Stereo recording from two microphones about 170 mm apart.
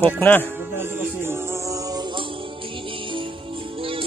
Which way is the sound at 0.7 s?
15° right (ahead or behind).